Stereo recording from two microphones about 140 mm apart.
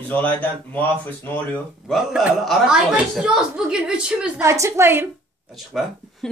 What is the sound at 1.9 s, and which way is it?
Speech, centre (ahead or behind).